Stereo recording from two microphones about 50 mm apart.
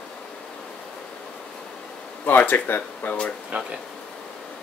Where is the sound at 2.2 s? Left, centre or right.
Left.